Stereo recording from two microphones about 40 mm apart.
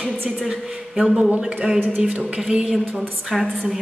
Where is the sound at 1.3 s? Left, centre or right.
Right.